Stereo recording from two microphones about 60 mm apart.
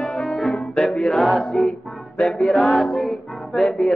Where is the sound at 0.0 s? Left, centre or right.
Left.